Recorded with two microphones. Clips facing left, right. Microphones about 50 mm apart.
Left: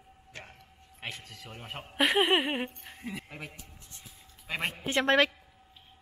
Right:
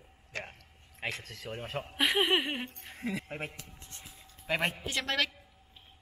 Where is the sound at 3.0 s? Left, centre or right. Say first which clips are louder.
Right 4 dB; right.